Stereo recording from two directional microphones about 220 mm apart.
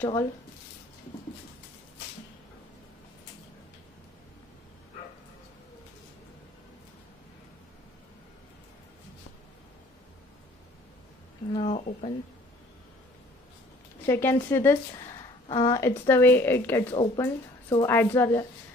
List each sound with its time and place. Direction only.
11.5 s speech: 30° left (ahead or behind)
14.0 s a woman's voice: 10° left (ahead or behind)
16.9 s speech: 25° left (ahead or behind)
17.2 s a woman's voice: 10° left (ahead or behind)